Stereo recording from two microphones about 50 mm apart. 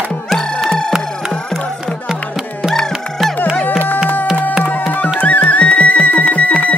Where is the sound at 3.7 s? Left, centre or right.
Left.